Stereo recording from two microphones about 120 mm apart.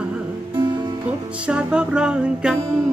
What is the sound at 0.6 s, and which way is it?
Music, 35° right (ahead or behind).